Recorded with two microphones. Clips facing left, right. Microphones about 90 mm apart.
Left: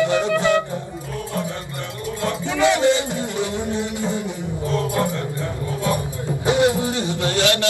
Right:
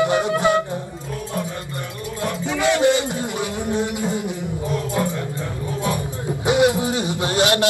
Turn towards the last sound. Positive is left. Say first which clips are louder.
# right 1 dB
turn(degrees=-20)  # may be behind; listen again after turning